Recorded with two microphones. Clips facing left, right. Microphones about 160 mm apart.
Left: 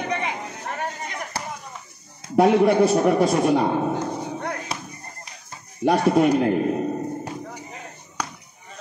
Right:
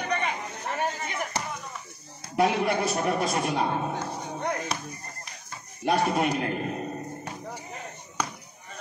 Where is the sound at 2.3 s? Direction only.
60° left (ahead or behind).